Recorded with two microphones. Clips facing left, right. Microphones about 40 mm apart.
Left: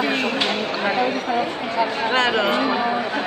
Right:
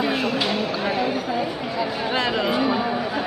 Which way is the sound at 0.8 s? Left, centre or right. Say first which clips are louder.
Left 5 dB; centre.